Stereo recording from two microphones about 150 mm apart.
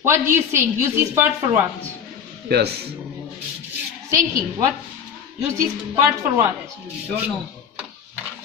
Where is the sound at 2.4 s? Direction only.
90° right.